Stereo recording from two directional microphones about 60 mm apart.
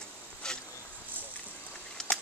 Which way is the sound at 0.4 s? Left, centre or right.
Centre.